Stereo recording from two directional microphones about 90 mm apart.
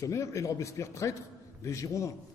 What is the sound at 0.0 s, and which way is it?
A man's voice, 35° left (ahead or behind).